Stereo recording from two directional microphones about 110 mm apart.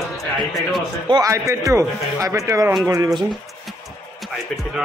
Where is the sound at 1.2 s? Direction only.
25° right (ahead or behind).